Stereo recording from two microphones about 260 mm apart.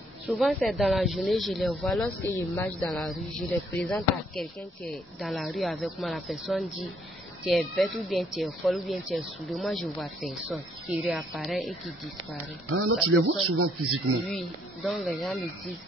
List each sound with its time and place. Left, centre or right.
0.3 s speech: centre
12.6 s speech: right
14.2 s speech: centre